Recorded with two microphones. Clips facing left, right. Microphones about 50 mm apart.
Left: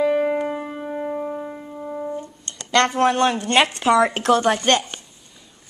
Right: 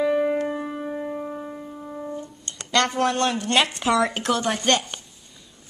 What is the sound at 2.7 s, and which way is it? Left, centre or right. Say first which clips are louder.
Speech: left 4 dB; centre.